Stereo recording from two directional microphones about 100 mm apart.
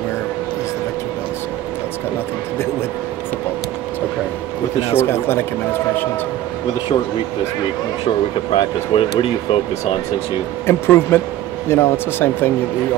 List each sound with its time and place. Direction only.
4.9 s speech: 25° left (ahead or behind)
8.5 s speech: 65° left (ahead or behind)
10.7 s speech: 25° left (ahead or behind)